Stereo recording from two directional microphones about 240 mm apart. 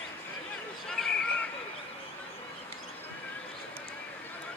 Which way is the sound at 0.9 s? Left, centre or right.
Centre.